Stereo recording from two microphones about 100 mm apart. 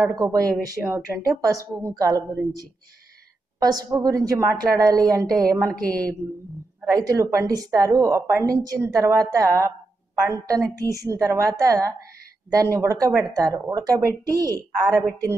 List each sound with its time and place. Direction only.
0.0 s a woman's voice: 35° right (ahead or behind)
3.6 s a woman's voice: 40° right (ahead or behind)